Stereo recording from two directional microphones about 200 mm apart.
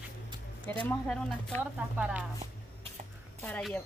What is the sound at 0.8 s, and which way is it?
Speech, 5° left (ahead or behind).